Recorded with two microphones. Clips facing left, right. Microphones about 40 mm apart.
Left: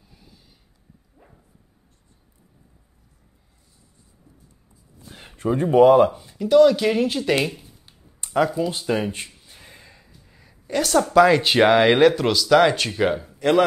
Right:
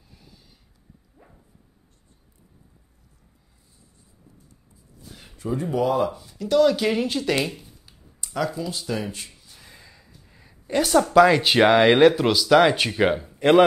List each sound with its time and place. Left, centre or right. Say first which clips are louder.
0.0 s gasp: even; centre
1.1 s dog: even; centre
5.0 s speech: left 7 dB; left
6.1 s speech: left 5 dB; centre
6.6 s speech: left 2 dB; centre
7.8 s a sound: even; left; by 10.6 s centre
10.7 s speech: even; centre
13.4 s speech: right 3 dB; right